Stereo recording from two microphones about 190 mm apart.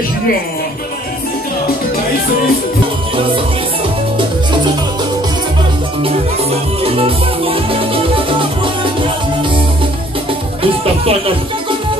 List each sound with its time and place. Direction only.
6.8 s music: 30° right (ahead or behind)
10.6 s music: 30° right (ahead or behind)